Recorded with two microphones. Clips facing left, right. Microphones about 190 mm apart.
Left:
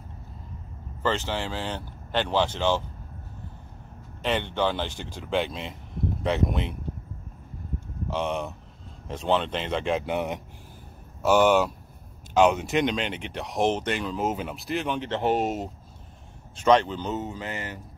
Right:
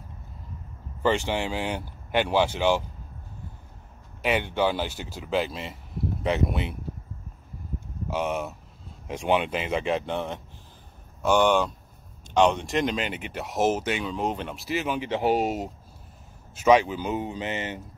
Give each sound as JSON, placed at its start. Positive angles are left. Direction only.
{"t": 1.0, "sound": "speech", "side_deg": -15}
{"t": 4.2, "sound": "speech", "side_deg": -10}
{"t": 8.1, "sound": "speech", "side_deg": -5}